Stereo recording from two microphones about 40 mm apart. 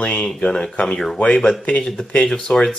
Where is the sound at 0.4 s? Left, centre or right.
Centre.